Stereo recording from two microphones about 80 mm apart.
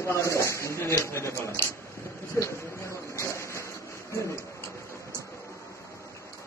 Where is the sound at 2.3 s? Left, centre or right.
Left.